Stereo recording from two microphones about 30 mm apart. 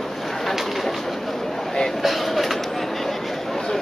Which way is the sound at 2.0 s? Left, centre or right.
Centre.